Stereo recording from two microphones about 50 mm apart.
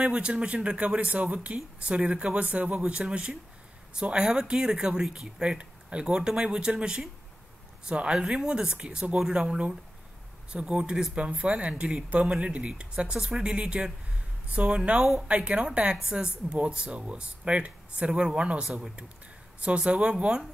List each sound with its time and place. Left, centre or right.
0.0 s speech: centre